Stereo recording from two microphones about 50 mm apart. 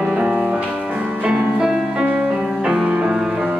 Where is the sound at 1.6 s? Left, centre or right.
Centre.